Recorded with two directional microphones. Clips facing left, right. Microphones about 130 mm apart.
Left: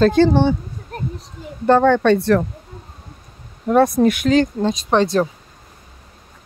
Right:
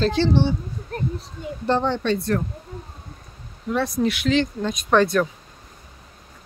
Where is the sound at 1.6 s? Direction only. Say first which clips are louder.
Left 9 dB; 55° left (ahead or behind); by 2.4 s 75° left (ahead or behind).